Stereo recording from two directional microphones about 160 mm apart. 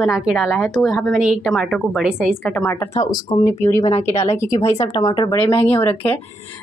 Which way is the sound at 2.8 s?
25° left (ahead or behind).